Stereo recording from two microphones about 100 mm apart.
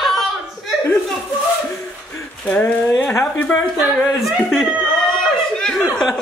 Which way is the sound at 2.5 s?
15° left (ahead or behind).